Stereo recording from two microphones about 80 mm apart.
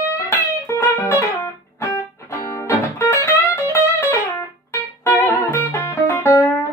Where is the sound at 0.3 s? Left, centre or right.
Left.